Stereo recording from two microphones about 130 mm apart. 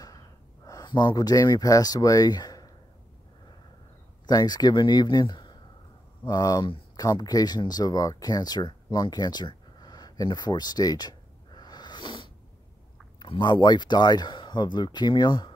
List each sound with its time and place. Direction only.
0.7 s speech: 30° left (ahead or behind)
4.3 s speech: 30° left (ahead or behind)